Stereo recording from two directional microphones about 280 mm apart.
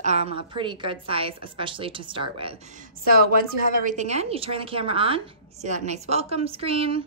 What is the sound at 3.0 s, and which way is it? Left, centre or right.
A woman's voice, right.